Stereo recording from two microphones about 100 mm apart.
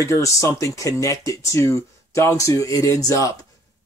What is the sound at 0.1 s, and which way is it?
Speech, 30° left (ahead or behind).